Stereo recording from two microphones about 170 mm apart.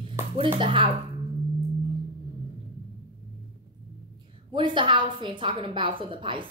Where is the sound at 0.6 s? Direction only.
30° right (ahead or behind).